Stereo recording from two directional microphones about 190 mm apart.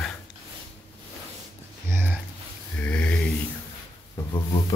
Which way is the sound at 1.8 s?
10° right (ahead or behind).